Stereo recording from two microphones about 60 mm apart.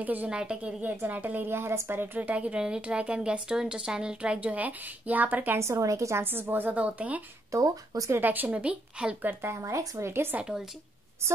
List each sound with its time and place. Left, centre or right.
0.0 s a woman's voice: right
0.3 s speech: centre
0.8 s a woman's voice: right
2.1 s speech: right
5.6 s a woman's voice: right
6.2 s a woman's voice: right
7.5 s speech: right
8.1 s a woman's voice: right
9.3 s a woman's voice: right
9.6 s speech: right